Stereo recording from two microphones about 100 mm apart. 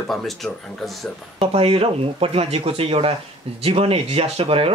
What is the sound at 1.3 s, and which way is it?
Speech, 75° right (ahead or behind).